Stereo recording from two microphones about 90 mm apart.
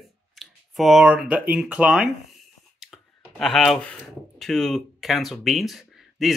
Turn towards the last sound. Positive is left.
turn(degrees=0)  # may be behind; listen again after turning